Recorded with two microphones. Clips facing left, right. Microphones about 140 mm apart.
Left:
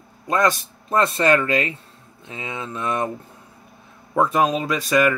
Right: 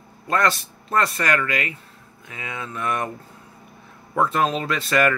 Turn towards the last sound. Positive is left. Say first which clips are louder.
# left 2 dB
turn(degrees=15)  # may be behind; listen again after turning